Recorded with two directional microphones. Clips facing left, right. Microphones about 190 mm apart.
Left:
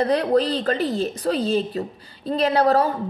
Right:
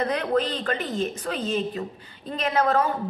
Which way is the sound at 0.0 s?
35° left (ahead or behind).